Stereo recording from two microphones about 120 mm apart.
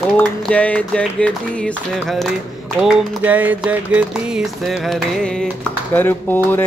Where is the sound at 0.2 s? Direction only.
10° left (ahead or behind).